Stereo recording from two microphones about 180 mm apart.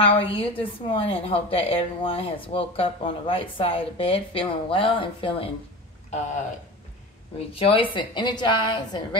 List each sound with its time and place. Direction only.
0.0 s a woman's voice: 30° left (ahead or behind)
7.3 s a woman's voice: 30° left (ahead or behind)